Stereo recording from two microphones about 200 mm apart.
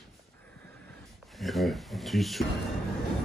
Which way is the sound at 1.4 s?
Centre (ahead or behind).